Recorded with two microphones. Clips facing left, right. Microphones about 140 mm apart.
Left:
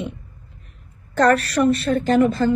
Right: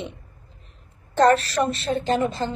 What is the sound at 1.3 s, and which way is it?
Speech, 25° right (ahead or behind).